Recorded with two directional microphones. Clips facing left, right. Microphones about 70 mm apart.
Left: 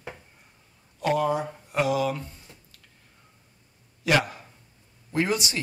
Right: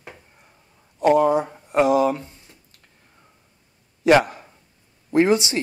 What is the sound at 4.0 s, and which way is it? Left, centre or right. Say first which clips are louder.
Speech: right 8 dB; right.